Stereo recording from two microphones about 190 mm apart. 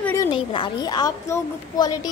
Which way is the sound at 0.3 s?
25° left (ahead or behind).